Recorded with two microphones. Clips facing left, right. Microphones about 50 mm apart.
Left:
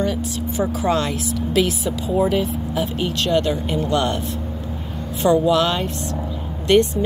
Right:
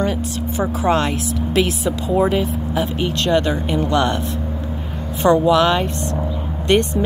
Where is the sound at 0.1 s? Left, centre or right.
Right.